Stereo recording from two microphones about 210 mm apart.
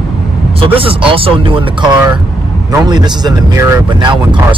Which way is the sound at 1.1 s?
25° right (ahead or behind).